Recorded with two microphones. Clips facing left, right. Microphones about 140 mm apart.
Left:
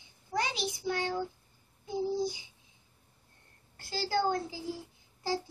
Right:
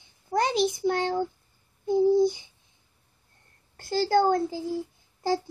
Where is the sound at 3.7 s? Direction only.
50° right (ahead or behind).